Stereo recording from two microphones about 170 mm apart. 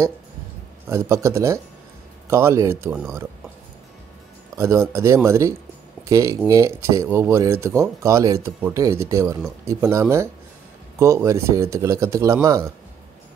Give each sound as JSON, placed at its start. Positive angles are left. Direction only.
{"t": 0.8, "sound": "speech", "side_deg": -15}
{"t": 4.6, "sound": "speech", "side_deg": -15}